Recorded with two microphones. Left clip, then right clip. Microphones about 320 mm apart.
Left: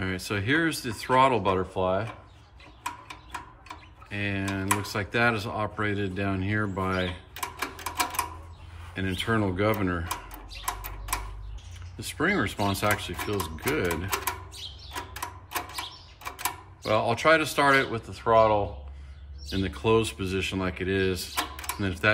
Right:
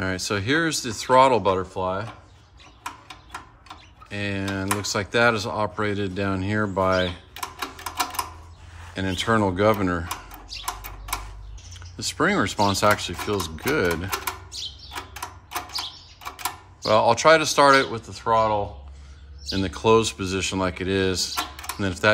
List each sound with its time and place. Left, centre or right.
0.0 s speech: centre
4.1 s speech: centre
12.0 s speech: centre
16.8 s speech: centre